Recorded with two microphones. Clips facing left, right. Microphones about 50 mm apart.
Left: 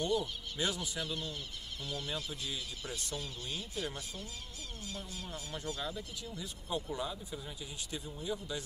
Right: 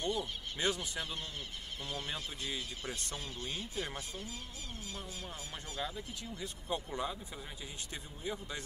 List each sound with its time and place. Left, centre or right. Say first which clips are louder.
0.0 s speech: left 3 dB; right
5.5 s speech: left 2 dB; right
6.4 s speech: even; right